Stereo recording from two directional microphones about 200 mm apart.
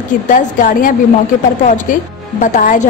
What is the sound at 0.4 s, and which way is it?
Speech, 45° left (ahead or behind).